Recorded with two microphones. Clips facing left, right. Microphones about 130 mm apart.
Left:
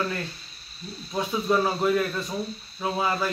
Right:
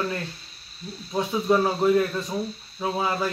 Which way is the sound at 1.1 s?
20° right (ahead or behind).